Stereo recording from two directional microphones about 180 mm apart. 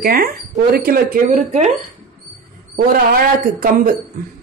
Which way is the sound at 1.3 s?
40° right (ahead or behind).